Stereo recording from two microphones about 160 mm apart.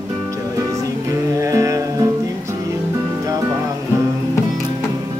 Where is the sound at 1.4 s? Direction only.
20° right (ahead or behind).